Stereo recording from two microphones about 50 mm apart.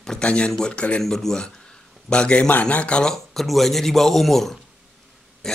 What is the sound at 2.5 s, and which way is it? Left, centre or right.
Speech, left.